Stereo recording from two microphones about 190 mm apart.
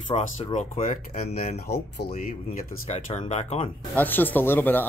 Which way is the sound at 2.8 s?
35° left (ahead or behind).